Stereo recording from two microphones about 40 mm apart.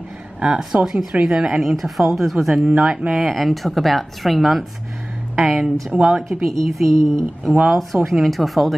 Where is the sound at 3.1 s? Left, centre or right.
Centre.